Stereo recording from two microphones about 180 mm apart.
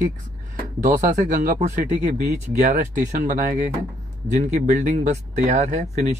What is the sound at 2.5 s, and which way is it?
Speech, 55° right (ahead or behind).